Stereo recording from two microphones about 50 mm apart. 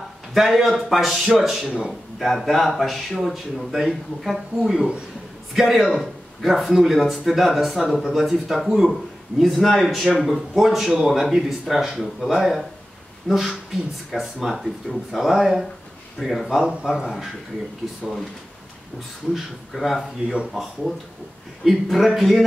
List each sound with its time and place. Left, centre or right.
0.3 s a man's voice: centre
4.7 s a man's voice: right
5.5 s a man's voice: centre
19.3 s a man's voice: centre
21.6 s a man's voice: centre